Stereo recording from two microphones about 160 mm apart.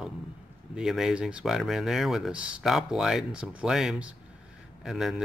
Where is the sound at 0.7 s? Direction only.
Centre (ahead or behind).